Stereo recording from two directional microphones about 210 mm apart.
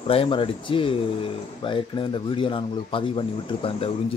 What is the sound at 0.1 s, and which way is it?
Speech, 25° left (ahead or behind).